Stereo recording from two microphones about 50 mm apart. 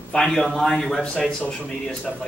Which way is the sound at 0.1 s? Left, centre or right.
Centre.